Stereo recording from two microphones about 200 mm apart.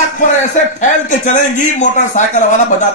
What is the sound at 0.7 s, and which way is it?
A man's voice, 40° left (ahead or behind).